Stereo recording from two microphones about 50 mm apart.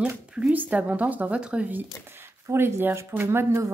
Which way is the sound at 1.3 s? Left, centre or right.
Centre.